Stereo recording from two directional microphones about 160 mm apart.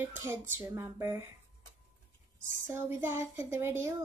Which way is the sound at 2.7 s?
15° right (ahead or behind).